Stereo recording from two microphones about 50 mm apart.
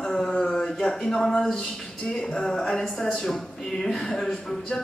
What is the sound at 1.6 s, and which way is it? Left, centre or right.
A woman's voice, centre.